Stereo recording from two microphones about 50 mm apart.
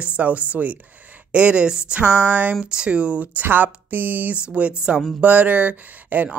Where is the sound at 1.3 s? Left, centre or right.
Right.